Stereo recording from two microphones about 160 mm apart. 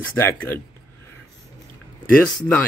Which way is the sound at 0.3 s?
10° left (ahead or behind).